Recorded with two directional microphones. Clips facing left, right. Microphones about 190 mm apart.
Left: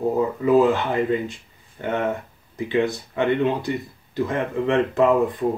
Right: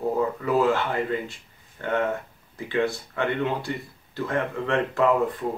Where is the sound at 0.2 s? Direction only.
20° left (ahead or behind).